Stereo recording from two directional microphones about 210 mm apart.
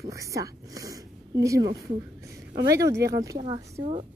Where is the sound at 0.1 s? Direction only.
15° right (ahead or behind).